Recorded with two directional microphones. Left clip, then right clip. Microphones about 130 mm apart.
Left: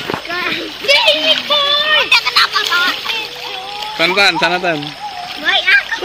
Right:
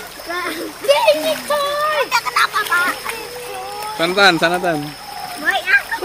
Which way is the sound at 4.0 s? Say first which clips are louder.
Left 1 dB; 5° right (ahead or behind).